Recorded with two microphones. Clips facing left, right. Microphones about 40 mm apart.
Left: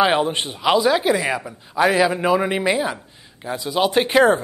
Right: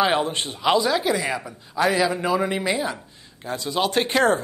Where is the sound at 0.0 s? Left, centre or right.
Centre.